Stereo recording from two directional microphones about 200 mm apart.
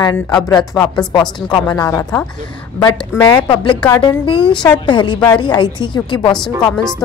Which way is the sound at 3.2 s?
25° left (ahead or behind).